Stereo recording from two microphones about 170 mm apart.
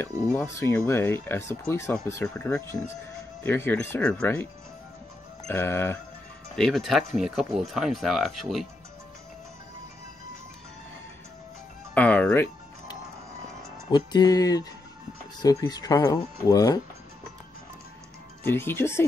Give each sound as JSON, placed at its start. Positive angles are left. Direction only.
{"t": 0.0, "sound": "speech", "side_deg": 10}
{"t": 5.5, "sound": "speech", "side_deg": 15}
{"t": 6.5, "sound": "speech", "side_deg": 0}
{"t": 11.9, "sound": "speech", "side_deg": 10}
{"t": 13.9, "sound": "speech", "side_deg": 25}
{"t": 18.4, "sound": "speech", "side_deg": 15}